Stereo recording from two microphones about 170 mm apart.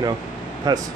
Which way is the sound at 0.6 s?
20° right (ahead or behind).